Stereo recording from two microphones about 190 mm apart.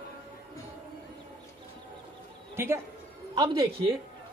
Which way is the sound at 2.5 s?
10° right (ahead or behind).